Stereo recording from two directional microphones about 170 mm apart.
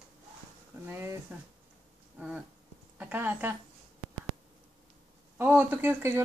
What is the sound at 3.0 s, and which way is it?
Speech, 10° right (ahead or behind).